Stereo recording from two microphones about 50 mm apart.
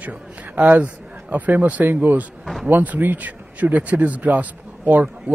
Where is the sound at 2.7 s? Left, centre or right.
Right.